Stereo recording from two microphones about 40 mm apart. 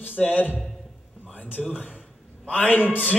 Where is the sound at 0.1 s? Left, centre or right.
Left.